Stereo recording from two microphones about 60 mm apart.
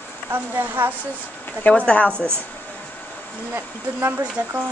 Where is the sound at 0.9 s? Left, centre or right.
Left.